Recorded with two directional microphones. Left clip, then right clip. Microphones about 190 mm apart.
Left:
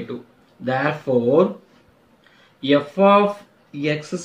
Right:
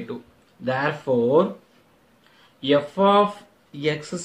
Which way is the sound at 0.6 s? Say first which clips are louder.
Left 2 dB; 50° right (ahead or behind).